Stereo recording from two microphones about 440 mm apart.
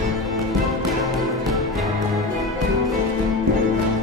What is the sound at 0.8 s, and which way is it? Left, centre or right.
Music, centre.